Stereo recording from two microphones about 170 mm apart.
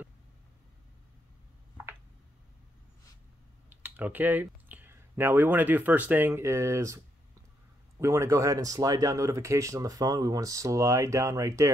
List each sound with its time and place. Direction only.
3.7 s speech: 10° right (ahead or behind)
8.0 s speech: 15° right (ahead or behind)